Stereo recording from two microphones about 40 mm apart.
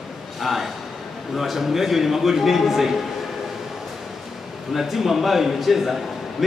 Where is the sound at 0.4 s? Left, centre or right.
Centre.